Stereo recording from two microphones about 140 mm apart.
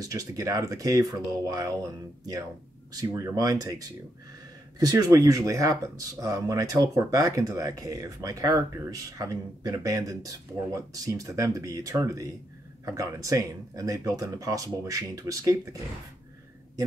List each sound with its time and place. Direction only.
0.0 s speech: 25° right (ahead or behind)